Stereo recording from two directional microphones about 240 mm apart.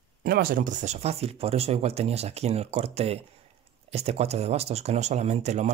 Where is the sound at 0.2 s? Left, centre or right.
Right.